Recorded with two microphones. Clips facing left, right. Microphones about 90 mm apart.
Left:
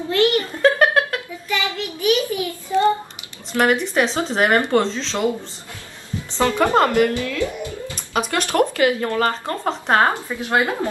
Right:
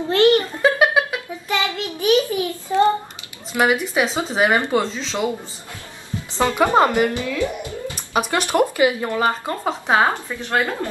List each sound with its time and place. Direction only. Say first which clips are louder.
0.1 s a sound: right 3 dB; 30° right (ahead or behind)
0.6 s a sound: left 1 dB; 5° right (ahead or behind)
1.5 s child singing: right 1 dB; 25° right (ahead or behind)
3.5 s speech: left 1 dB; 5° right (ahead or behind)
6.3 s speech: even; 15° right (ahead or behind)
10.2 s speech: left 2 dB; 10° left (ahead or behind)